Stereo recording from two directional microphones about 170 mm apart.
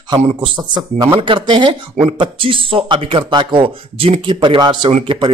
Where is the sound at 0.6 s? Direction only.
25° right (ahead or behind).